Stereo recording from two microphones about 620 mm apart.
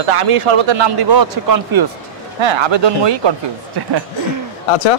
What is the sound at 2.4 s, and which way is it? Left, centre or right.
Speech, right.